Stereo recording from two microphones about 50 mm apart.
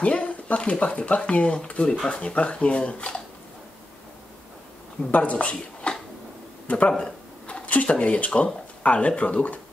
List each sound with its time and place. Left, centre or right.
0.0 s speech: left
5.1 s speech: left
7.4 s speech: left